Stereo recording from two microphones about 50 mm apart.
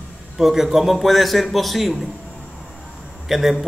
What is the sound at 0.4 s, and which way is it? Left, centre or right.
A man's voice, centre.